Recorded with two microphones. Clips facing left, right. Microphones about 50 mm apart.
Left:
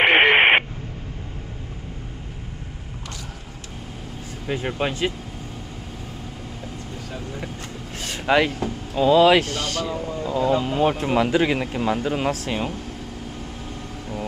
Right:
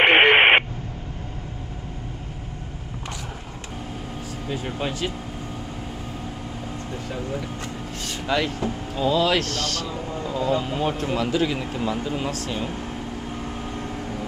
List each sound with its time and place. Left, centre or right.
0.0 s radio: centre
4.5 s speech: left
8.0 s vehicle: left
8.9 s speech: centre
10.8 s speech: left